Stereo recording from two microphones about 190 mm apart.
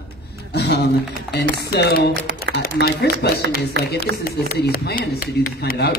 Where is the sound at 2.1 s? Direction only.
70° right (ahead or behind).